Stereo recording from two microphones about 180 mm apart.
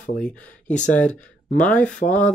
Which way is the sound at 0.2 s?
5° left (ahead or behind).